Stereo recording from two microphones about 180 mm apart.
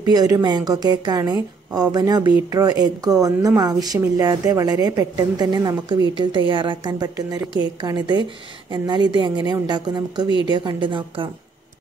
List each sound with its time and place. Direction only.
0.0 s a woman's voice: 20° right (ahead or behind)